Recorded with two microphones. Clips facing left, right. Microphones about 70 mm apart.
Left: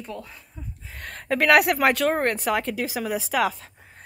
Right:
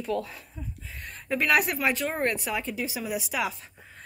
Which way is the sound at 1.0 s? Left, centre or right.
Left.